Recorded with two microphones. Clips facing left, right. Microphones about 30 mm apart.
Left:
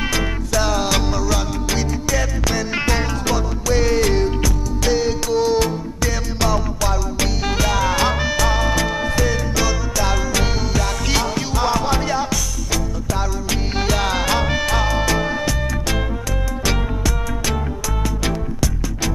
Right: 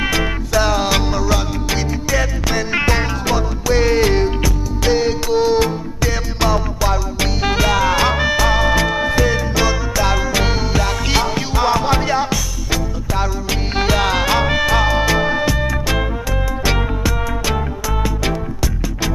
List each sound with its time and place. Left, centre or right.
0.0 s music: centre